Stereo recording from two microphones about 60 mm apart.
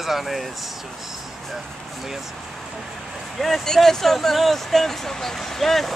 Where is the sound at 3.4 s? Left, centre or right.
Centre.